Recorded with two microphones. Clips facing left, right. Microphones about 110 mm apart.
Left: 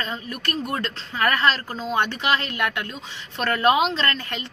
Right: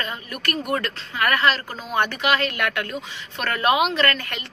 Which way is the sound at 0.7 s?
25° left (ahead or behind).